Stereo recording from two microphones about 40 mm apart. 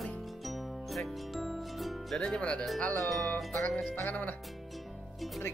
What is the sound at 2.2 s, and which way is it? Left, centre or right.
Speech, left.